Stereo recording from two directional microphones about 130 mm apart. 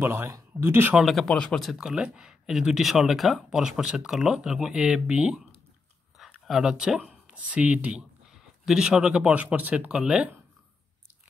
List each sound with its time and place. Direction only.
0.0 s speech: 15° right (ahead or behind)
1.0 s speech: centre (ahead or behind)